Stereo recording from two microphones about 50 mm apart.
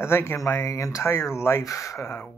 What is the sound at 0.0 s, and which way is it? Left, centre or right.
Speech, left.